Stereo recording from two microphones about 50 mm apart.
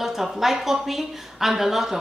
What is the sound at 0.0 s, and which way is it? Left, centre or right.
A woman's voice, centre.